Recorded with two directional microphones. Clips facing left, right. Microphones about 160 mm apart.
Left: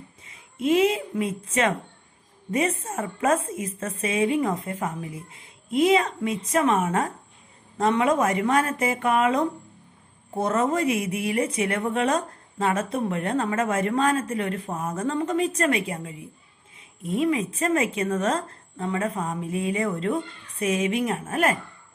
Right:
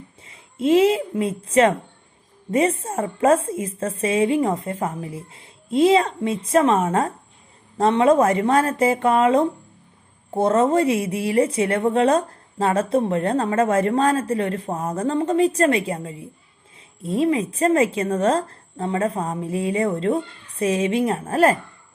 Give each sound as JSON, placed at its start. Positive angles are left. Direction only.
{"t": 0.2, "sound": "a woman's voice", "side_deg": -30}